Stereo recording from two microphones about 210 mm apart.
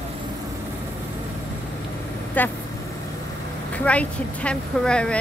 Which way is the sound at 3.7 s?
5° left (ahead or behind).